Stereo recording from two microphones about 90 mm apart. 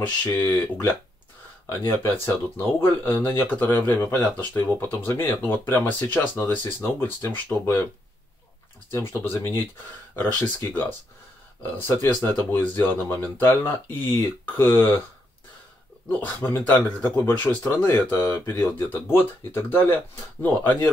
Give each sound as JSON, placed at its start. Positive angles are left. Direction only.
{"t": 0.0, "sound": "speech", "side_deg": 25}
{"t": 2.2, "sound": "speech", "side_deg": 25}
{"t": 8.9, "sound": "speech", "side_deg": 25}
{"t": 10.1, "sound": "speech", "side_deg": 15}
{"t": 11.6, "sound": "speech", "side_deg": 25}
{"t": 16.1, "sound": "speech", "side_deg": 10}